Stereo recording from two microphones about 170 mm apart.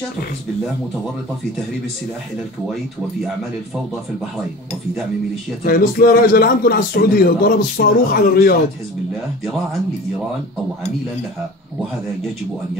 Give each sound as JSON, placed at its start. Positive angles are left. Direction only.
{"t": 5.6, "sound": "a man's voice", "side_deg": 60}